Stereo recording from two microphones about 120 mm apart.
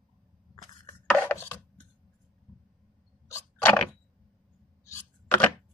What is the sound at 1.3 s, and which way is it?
Rub, 15° left (ahead or behind).